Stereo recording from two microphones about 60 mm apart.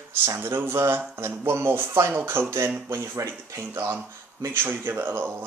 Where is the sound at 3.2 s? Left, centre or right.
Right.